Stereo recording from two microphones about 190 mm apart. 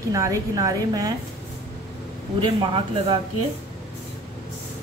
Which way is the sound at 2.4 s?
25° right (ahead or behind).